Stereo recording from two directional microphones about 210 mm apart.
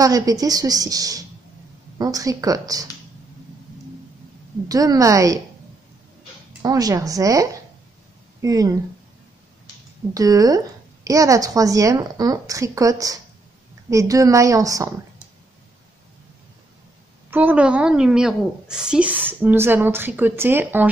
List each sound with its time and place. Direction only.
0.0 s a woman's voice: 15° right (ahead or behind)
4.6 s a woman's voice: 15° right (ahead or behind)
6.6 s a woman's voice: 15° right (ahead or behind)
10.1 s a woman's voice: 15° right (ahead or behind)
17.3 s a woman's voice: 10° right (ahead or behind)